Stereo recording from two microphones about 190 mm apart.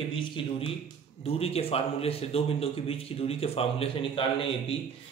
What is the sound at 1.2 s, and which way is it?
Speech, 30° left (ahead or behind).